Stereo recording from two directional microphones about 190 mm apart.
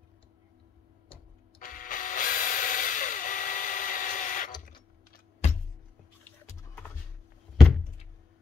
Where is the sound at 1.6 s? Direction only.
45° left (ahead or behind).